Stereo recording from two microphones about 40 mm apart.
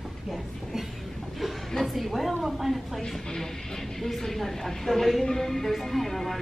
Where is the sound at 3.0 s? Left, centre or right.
Centre.